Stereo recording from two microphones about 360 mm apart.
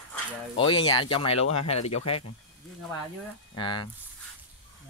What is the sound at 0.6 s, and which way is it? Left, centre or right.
Speech, centre.